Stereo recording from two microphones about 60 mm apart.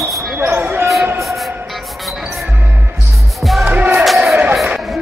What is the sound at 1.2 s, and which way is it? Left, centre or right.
Music, centre.